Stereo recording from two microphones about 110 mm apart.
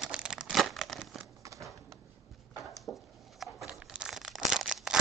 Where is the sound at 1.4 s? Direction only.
30° right (ahead or behind).